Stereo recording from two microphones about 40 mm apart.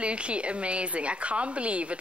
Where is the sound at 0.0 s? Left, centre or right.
Right.